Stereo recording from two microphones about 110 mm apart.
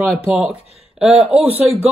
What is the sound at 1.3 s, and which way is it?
Speech, 15° right (ahead or behind).